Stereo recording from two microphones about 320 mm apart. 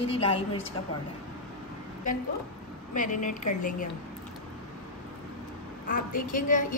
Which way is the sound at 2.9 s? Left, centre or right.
Left.